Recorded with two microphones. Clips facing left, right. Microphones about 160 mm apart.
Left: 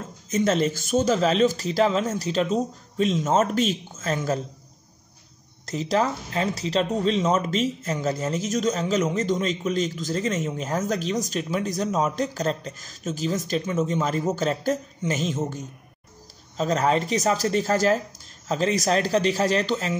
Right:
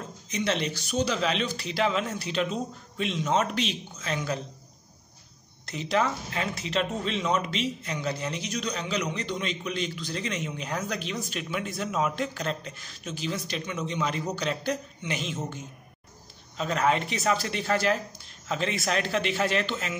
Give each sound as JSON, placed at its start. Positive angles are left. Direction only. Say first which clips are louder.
{"t": 0.3, "sound": "speech", "louder": "left 7 dB", "side_deg": 45}
{"t": 5.7, "sound": "speech", "louder": "left 3 dB", "side_deg": 40}